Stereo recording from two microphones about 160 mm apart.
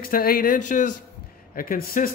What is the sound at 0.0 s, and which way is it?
A man's voice, 65° left (ahead or behind).